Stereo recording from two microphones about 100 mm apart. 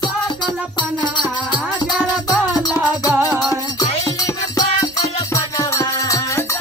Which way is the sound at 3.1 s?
15° right (ahead or behind).